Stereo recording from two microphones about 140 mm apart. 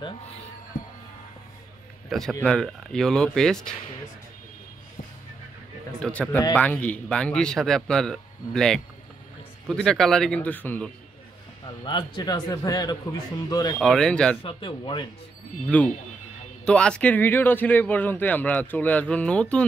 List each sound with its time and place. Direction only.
2.0 s speech: centre (ahead or behind)
5.9 s speech: 5° left (ahead or behind)
11.6 s a man's voice: 35° left (ahead or behind)
13.7 s speech: 5° left (ahead or behind)
14.4 s speech: 40° left (ahead or behind)
15.7 s speech: 10° left (ahead or behind)